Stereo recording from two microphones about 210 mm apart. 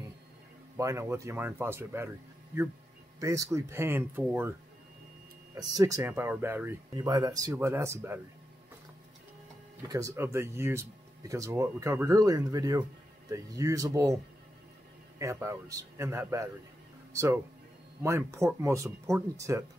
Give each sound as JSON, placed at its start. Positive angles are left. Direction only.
{"t": 0.7, "sound": "speech", "side_deg": -15}
{"t": 3.2, "sound": "speech", "side_deg": -15}
{"t": 9.8, "sound": "speech", "side_deg": -15}
{"t": 15.1, "sound": "speech", "side_deg": -15}